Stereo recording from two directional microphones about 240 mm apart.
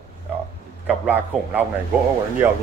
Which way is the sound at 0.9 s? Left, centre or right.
Centre.